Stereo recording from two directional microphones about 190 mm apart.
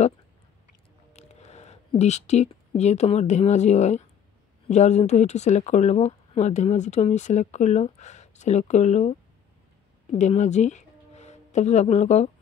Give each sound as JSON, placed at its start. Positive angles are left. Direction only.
{"t": 1.1, "sound": "speech", "side_deg": 35}
{"t": 10.1, "sound": "speech", "side_deg": 40}